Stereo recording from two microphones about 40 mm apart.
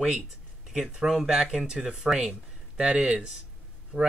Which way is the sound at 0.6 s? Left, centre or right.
Centre.